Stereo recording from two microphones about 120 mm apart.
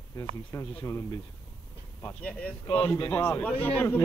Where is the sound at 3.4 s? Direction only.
15° left (ahead or behind).